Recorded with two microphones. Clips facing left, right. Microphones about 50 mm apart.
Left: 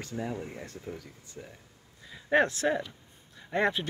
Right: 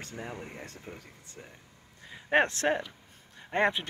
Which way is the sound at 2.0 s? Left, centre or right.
Right.